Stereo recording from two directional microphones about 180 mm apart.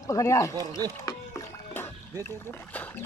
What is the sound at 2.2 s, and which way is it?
Speech, 15° left (ahead or behind).